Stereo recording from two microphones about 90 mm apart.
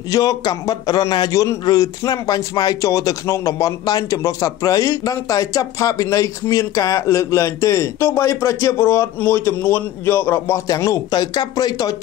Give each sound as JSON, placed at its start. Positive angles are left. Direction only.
{"t": 0.1, "sound": "a man's voice", "side_deg": 45}
{"t": 10.7, "sound": "speech", "side_deg": 40}